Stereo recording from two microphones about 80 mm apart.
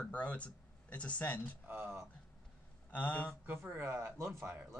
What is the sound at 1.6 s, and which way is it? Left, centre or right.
Speech, right.